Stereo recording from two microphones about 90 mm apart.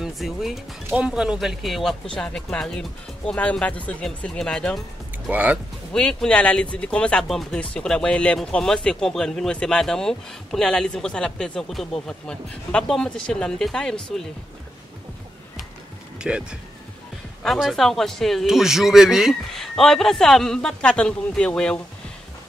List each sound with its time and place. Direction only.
0.0 s speech: 5° right (ahead or behind)
5.3 s speech: 15° right (ahead or behind)
5.9 s speech: 10° left (ahead or behind)
16.2 s speech: 10° right (ahead or behind)
17.6 s speech: centre (ahead or behind)